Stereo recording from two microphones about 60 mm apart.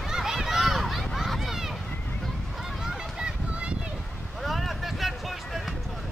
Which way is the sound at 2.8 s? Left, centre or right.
Centre.